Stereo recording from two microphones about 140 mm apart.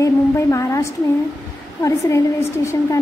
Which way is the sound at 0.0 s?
20° left (ahead or behind).